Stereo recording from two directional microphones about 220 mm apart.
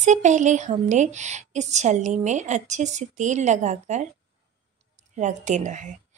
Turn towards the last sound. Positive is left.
turn(degrees=-35)  # may be behind; listen again after turning